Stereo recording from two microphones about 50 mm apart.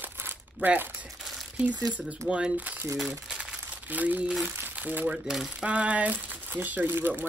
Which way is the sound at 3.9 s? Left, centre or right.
Right.